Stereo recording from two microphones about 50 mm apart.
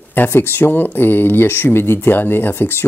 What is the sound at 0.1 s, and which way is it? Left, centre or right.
Speech, left.